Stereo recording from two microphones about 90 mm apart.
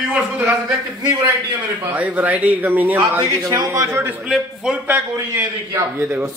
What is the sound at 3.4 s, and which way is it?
A man's voice, 40° right (ahead or behind).